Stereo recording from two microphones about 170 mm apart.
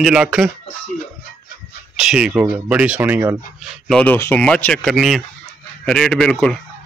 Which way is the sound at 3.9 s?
5° left (ahead or behind).